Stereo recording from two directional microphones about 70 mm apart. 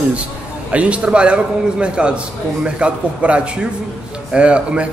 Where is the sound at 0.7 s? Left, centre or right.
Centre.